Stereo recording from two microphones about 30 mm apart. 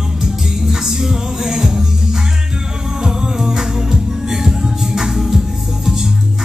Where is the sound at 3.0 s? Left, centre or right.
Right.